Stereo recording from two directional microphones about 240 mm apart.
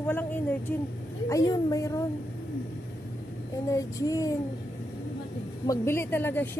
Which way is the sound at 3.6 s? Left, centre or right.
Centre.